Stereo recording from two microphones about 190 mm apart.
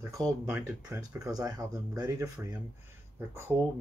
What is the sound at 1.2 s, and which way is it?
Speech, 20° right (ahead or behind).